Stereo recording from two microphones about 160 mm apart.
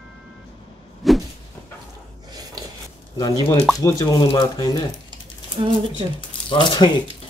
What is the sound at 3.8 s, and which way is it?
Speech, 25° left (ahead or behind).